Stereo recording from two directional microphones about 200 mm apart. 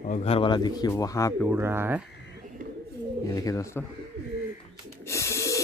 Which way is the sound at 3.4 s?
15° left (ahead or behind).